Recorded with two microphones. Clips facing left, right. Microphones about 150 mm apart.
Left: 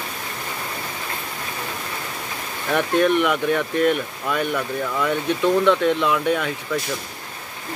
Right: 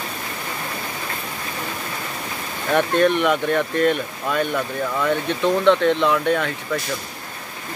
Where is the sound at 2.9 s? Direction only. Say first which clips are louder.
Left 1 dB; 10° left (ahead or behind).